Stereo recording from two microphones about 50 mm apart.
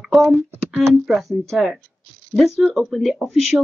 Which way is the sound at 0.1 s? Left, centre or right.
Centre.